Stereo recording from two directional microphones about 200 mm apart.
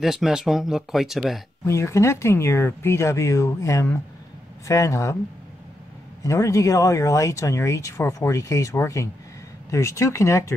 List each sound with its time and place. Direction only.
0.0 s speech: centre (ahead or behind)
1.6 s speech: 15° left (ahead or behind)
6.2 s speech: 15° left (ahead or behind)